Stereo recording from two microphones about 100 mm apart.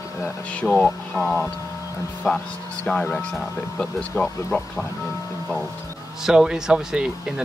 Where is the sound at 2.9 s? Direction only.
10° left (ahead or behind).